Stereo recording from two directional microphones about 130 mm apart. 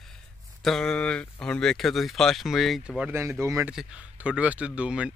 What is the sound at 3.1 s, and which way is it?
Speech, 20° right (ahead or behind).